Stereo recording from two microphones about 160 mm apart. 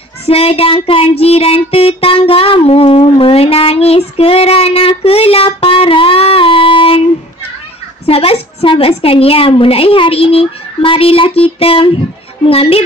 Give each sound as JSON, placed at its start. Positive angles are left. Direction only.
{"t": 0.3, "sound": "music", "side_deg": 35}
{"t": 8.1, "sound": "a woman's voice", "side_deg": 35}